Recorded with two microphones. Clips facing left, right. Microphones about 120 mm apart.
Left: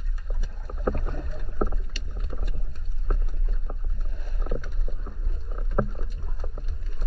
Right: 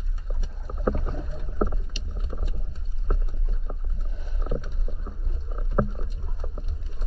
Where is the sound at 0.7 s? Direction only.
10° right (ahead or behind).